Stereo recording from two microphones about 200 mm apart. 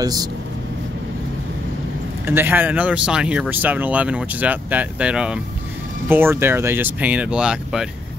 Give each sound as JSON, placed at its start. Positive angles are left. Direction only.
{"t": 0.0, "sound": "speech", "side_deg": -20}
{"t": 2.2, "sound": "speech", "side_deg": -10}